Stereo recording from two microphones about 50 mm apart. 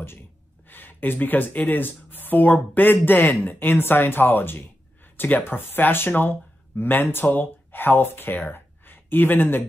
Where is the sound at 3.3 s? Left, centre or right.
Left.